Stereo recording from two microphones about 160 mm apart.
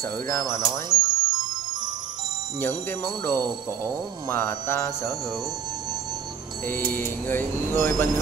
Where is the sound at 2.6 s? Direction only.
15° left (ahead or behind).